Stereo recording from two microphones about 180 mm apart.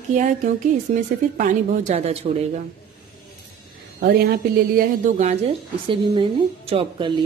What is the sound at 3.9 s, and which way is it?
Speech, 50° right (ahead or behind).